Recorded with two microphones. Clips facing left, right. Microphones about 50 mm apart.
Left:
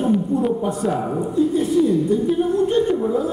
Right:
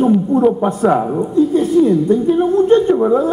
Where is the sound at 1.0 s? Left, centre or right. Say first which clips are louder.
Right 5 dB; right.